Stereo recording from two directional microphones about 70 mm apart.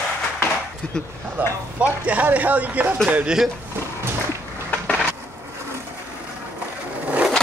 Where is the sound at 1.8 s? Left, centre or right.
Right.